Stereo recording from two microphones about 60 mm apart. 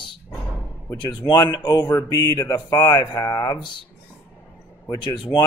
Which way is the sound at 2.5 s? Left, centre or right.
Left.